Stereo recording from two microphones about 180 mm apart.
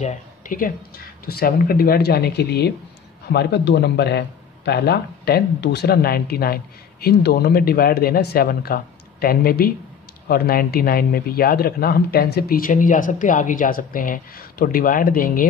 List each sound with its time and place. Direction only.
0.0 s speech: 45° left (ahead or behind)